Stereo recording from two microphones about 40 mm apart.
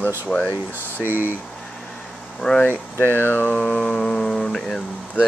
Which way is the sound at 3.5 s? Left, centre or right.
Left.